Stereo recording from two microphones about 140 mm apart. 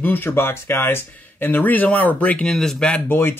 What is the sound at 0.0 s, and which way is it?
Speech, 15° left (ahead or behind).